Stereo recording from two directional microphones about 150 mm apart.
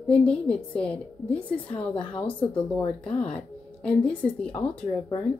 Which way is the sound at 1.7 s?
35° left (ahead or behind).